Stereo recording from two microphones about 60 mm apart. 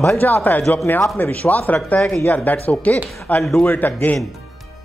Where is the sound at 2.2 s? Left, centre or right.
Left.